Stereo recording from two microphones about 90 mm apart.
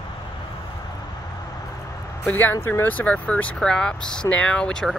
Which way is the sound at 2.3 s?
20° left (ahead or behind).